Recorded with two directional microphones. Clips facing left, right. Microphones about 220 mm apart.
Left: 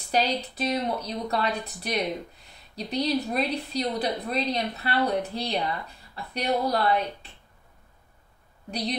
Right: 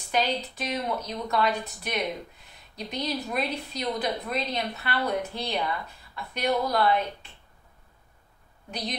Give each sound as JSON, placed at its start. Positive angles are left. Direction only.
{"t": 0.1, "sound": "a woman's voice", "side_deg": 35}
{"t": 8.6, "sound": "a woman's voice", "side_deg": 35}